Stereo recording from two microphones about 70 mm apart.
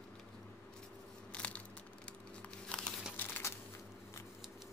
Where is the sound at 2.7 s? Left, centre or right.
Centre.